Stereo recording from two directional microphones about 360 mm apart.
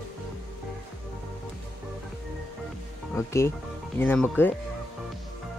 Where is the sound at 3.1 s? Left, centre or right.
Centre.